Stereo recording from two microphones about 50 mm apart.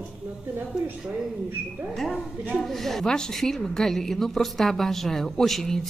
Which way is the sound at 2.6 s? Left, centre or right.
Centre.